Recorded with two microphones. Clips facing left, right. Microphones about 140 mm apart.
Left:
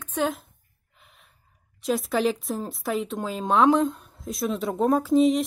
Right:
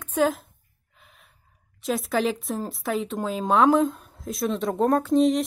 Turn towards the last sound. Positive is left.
turn(degrees=0)  # may be behind; listen again after turning